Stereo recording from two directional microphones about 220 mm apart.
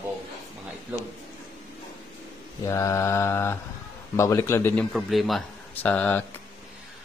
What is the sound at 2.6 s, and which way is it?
A man's voice, 15° left (ahead or behind).